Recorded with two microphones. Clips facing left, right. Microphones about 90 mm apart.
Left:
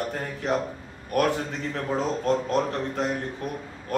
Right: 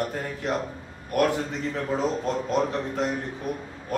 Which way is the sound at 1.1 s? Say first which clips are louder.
Even; centre (ahead or behind).